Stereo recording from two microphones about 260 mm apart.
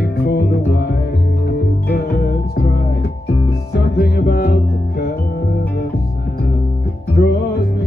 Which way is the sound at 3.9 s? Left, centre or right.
Left.